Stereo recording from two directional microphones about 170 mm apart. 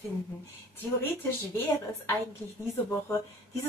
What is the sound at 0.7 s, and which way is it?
A woman's voice, 10° left (ahead or behind).